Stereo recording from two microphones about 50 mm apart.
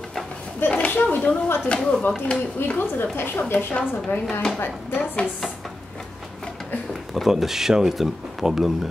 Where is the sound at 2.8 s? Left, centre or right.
Left.